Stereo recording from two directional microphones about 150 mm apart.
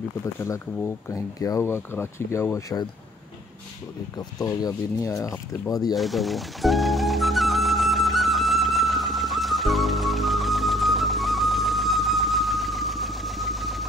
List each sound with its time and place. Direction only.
0.7 s speech: 15° left (ahead or behind)
4.2 s speech: 25° left (ahead or behind)
5.9 s music: centre (ahead or behind)